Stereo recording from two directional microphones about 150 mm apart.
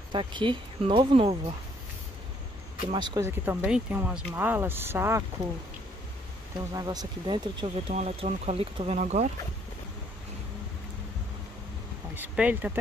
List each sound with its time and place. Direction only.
0.1 s speech: 35° right (ahead or behind)
2.9 s speech: 30° right (ahead or behind)
3.2 s speech: 15° right (ahead or behind)
6.7 s speech: 25° right (ahead or behind)
7.9 s speech: 45° right (ahead or behind)
12.2 s speech: 10° right (ahead or behind)